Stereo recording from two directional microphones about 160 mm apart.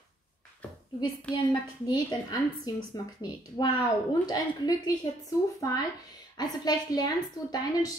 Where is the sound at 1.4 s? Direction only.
25° left (ahead or behind).